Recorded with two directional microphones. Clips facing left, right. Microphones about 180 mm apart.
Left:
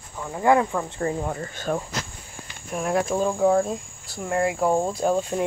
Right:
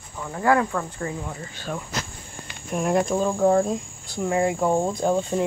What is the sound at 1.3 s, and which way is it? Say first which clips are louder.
Speech: left 5 dB; 50° left (ahead or behind).